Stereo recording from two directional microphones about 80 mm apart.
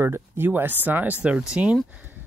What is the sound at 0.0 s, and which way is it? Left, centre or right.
Speech, right.